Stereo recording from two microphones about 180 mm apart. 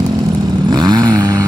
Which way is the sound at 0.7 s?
25° right (ahead or behind).